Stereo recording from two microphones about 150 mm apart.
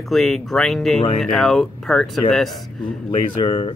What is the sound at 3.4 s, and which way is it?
Speech, 35° left (ahead or behind).